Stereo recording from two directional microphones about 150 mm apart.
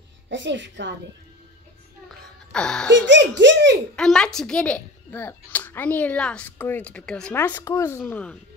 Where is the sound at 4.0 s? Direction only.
5° left (ahead or behind).